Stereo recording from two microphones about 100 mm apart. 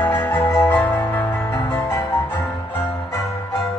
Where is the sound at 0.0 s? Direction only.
20° left (ahead or behind).